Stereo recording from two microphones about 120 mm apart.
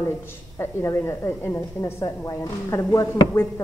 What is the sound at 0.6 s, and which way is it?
A woman's voice, 20° left (ahead or behind).